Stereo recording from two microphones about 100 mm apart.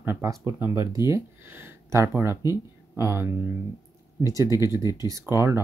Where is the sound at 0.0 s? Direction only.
25° right (ahead or behind).